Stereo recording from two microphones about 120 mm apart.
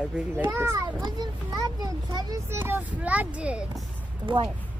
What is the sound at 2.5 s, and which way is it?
Speech, 20° right (ahead or behind).